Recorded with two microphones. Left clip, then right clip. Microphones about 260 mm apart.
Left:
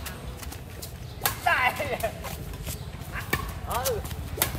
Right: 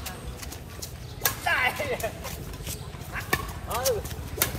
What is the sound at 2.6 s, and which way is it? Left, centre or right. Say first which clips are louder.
Dog: right 1 dB; centre.